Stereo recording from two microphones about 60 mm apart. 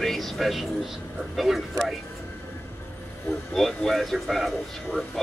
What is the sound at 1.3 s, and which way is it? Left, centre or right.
Speech, centre.